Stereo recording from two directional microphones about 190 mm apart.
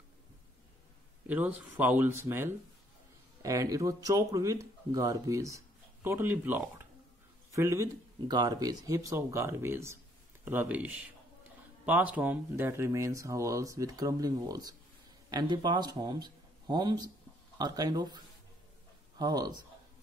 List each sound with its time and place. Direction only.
1.2 s a man's voice: 10° right (ahead or behind)